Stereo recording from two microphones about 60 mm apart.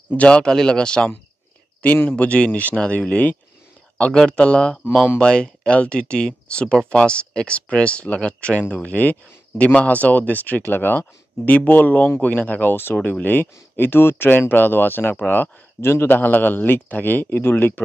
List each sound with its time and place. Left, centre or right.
0.1 s speech: left
2.0 s a man's voice: left